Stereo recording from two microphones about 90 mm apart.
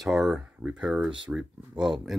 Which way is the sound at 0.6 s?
15° right (ahead or behind).